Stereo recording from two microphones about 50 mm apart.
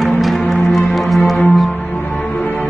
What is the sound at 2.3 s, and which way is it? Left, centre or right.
Music, left.